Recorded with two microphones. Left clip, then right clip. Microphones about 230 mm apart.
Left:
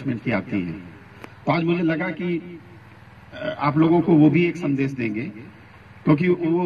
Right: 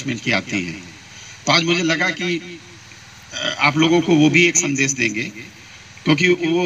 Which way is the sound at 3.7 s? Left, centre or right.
Centre.